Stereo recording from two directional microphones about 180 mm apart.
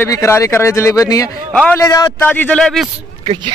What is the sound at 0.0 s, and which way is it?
A man's voice, 15° left (ahead or behind).